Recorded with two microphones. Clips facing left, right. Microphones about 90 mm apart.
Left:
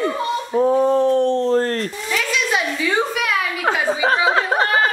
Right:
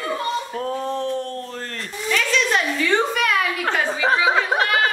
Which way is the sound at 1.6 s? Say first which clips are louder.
Left 11 dB; 45° left (ahead or behind).